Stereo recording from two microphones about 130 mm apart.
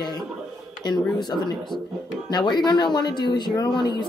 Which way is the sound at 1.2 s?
35° left (ahead or behind).